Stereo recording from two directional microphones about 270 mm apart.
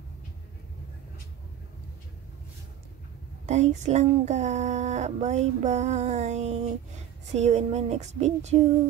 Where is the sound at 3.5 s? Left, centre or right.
Right.